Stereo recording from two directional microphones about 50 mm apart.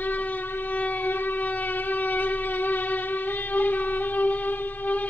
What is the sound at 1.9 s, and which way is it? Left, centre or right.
Music, left.